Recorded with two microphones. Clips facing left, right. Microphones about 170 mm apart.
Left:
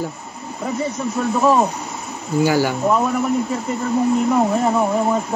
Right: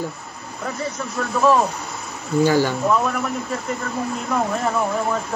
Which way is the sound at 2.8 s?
20° left (ahead or behind).